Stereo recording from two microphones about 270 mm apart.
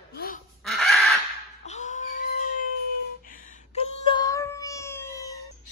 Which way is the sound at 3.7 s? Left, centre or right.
Centre.